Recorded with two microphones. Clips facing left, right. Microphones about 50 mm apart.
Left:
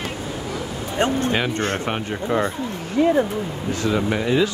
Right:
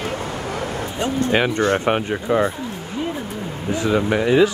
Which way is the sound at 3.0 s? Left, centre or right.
Left.